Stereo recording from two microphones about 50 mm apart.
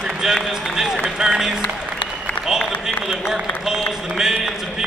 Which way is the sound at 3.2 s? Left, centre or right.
Centre.